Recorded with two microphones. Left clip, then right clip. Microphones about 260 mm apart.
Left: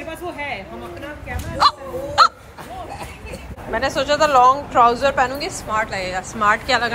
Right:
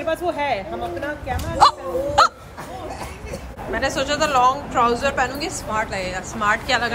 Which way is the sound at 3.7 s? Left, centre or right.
Centre.